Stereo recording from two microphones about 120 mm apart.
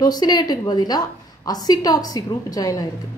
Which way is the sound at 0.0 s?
35° left (ahead or behind).